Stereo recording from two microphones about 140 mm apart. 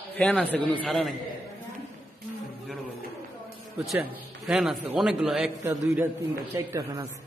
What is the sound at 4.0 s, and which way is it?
A man's voice, 5° right (ahead or behind).